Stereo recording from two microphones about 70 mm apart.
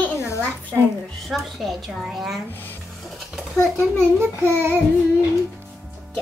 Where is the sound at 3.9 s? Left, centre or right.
Right.